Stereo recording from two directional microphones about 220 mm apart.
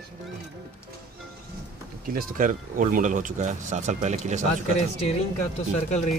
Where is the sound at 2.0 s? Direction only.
40° right (ahead or behind).